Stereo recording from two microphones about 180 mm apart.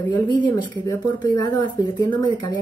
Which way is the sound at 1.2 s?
20° left (ahead or behind).